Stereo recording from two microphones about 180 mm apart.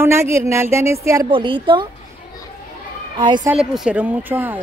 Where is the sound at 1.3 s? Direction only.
25° right (ahead or behind).